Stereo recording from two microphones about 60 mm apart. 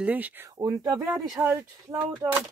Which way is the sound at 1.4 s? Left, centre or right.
Right.